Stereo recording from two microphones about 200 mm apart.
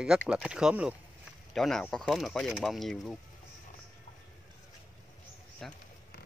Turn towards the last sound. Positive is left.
turn(degrees=0)  # may be behind; listen again after turning